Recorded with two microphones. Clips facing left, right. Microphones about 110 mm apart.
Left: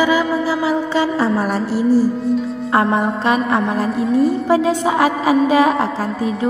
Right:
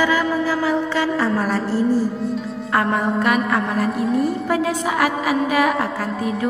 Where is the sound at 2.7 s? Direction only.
25° left (ahead or behind).